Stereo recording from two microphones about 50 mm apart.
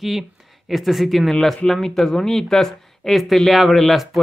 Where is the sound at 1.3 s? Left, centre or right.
Centre.